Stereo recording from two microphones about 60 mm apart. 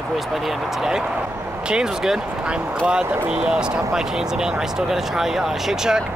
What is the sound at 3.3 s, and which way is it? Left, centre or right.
Speech, centre.